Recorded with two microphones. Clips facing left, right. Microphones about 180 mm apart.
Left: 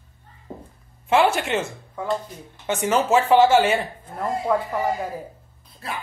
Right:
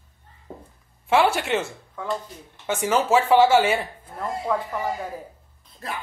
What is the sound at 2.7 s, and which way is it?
Speech, 10° right (ahead or behind).